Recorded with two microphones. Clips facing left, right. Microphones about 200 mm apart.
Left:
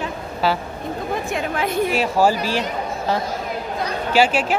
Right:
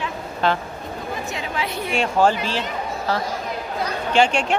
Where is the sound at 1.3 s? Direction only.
50° left (ahead or behind).